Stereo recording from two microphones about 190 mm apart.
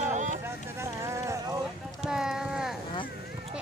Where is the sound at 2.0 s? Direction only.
5° right (ahead or behind).